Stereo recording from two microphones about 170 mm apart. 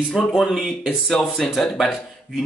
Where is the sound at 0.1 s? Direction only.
Centre (ahead or behind).